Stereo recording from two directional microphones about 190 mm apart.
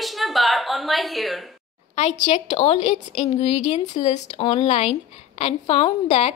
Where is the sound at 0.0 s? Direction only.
Centre (ahead or behind).